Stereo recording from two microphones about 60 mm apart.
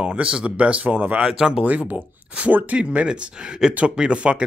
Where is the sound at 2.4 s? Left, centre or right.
Right.